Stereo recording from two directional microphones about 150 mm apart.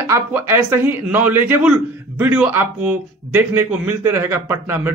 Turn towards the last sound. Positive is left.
turn(degrees=-15)  # may be behind; listen again after turning